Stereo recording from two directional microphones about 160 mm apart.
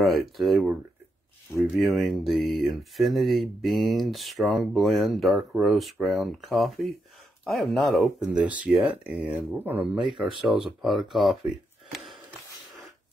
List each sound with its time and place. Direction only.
0.0 s speech: centre (ahead or behind)
2.0 s speech: centre (ahead or behind)
8.0 s speech: 10° right (ahead or behind)
9.8 s speech: 30° right (ahead or behind)
10.5 s speech: centre (ahead or behind)
11.9 s a sound: centre (ahead or behind)